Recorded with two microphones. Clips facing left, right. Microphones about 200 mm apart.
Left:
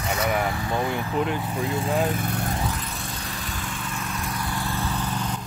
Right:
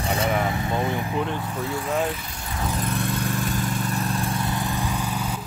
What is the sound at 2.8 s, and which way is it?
Vehicle, 60° right (ahead or behind).